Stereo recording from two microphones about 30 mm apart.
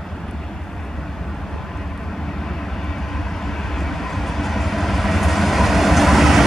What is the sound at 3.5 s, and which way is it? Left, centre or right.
Vehicle, centre.